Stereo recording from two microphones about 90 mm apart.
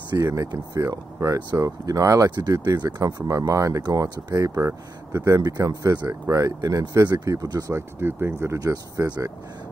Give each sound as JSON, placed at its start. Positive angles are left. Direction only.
{"t": 0.2, "sound": "speech", "side_deg": -35}
{"t": 2.3, "sound": "speech", "side_deg": -50}
{"t": 4.6, "sound": "speech", "side_deg": -30}
{"t": 5.4, "sound": "speech", "side_deg": -45}
{"t": 7.7, "sound": "speech", "side_deg": -30}
{"t": 8.5, "sound": "speech", "side_deg": -40}